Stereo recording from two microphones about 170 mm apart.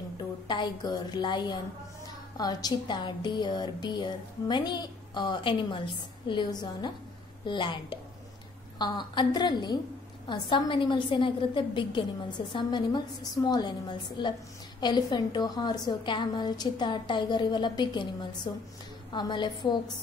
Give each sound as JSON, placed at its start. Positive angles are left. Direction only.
{"t": 0.5, "sound": "a woman's voice", "side_deg": 25}